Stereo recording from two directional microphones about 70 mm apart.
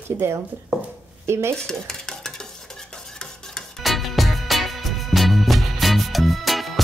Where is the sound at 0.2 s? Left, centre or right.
Right.